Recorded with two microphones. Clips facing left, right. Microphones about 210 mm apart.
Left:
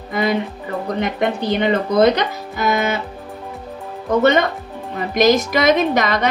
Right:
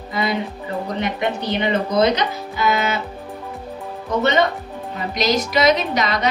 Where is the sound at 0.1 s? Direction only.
50° left (ahead or behind).